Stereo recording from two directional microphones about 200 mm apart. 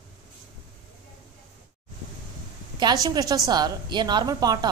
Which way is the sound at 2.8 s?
20° right (ahead or behind).